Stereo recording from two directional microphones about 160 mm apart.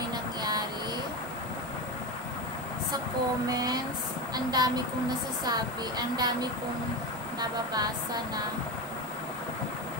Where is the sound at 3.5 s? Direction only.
25° right (ahead or behind).